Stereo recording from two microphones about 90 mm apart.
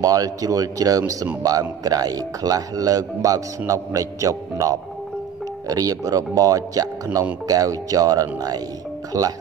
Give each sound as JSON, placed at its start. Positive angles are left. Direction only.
{"t": 0.0, "sound": "speech", "side_deg": -40}